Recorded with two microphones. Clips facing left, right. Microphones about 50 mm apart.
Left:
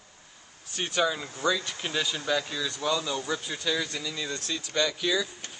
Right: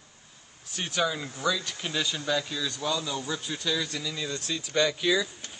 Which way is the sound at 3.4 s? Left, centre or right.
Centre.